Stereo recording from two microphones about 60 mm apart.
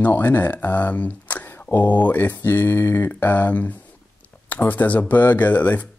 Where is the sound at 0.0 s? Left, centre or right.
Left.